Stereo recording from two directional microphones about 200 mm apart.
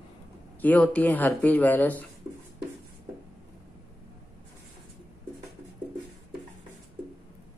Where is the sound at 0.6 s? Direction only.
5° left (ahead or behind).